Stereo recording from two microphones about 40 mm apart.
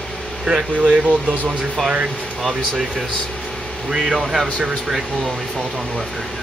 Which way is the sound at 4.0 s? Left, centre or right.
Centre.